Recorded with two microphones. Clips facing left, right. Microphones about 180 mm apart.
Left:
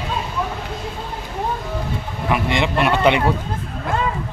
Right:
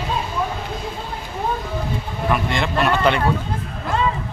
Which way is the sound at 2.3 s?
15° left (ahead or behind).